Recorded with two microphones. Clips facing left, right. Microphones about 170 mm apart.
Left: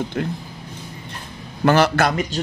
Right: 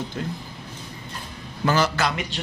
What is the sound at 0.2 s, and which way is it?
Speech, 65° left (ahead or behind).